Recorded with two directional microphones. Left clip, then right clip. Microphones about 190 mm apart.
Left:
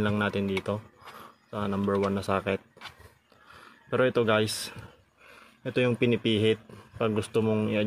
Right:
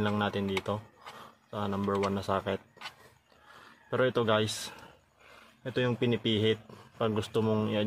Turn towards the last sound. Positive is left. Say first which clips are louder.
# left 3 dB
turn(degrees=15)  # may be behind; listen again after turning